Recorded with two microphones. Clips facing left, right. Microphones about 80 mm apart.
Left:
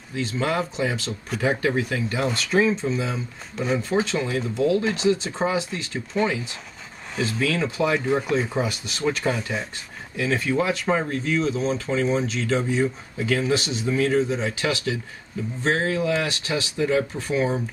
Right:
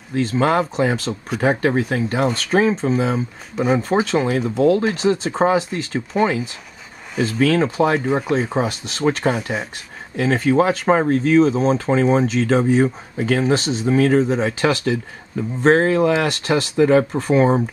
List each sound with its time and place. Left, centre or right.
0.1 s speech: right